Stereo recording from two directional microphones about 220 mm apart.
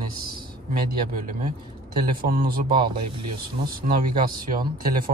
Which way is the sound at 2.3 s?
40° right (ahead or behind).